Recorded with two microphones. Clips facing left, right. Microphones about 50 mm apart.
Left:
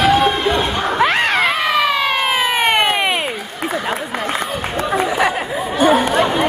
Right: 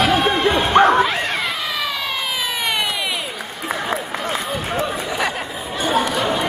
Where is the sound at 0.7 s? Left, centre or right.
Right.